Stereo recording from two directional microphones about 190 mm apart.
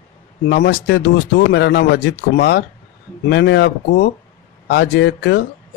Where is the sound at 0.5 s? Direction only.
55° left (ahead or behind).